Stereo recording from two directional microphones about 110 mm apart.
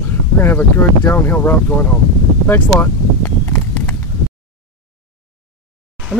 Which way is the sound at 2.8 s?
20° left (ahead or behind).